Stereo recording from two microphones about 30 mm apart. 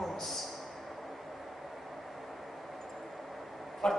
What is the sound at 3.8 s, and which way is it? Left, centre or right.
Speech, centre.